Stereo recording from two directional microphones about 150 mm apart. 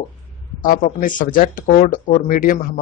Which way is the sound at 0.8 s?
60° left (ahead or behind).